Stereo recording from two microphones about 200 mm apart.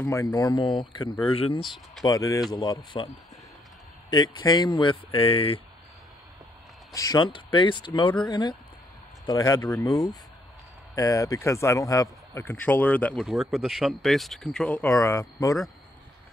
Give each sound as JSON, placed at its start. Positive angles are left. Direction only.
{"t": 0.0, "sound": "speech", "side_deg": 15}
{"t": 2.0, "sound": "a man's voice", "side_deg": 15}
{"t": 4.1, "sound": "speech", "side_deg": 20}
{"t": 6.9, "sound": "a man's voice", "side_deg": 15}